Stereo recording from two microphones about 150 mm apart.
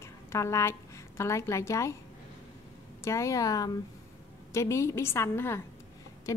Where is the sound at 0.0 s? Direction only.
20° left (ahead or behind).